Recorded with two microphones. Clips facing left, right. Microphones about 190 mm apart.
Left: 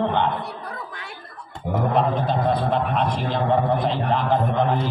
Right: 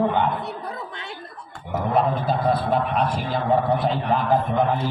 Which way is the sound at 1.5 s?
20° left (ahead or behind).